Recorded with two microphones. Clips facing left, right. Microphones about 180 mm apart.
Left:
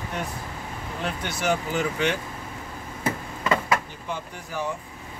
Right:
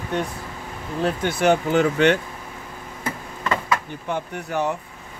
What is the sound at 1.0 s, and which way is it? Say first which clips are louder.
Speech: right 8 dB; 50° right (ahead or behind).